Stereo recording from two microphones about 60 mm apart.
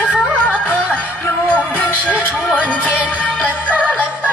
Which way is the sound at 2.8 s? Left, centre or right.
Left.